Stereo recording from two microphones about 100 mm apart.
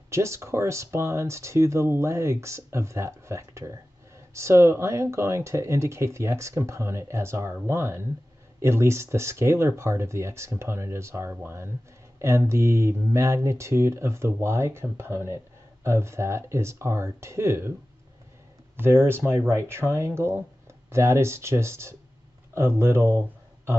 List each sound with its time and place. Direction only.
0.1 s speech: 30° right (ahead or behind)
18.8 s speech: 25° right (ahead or behind)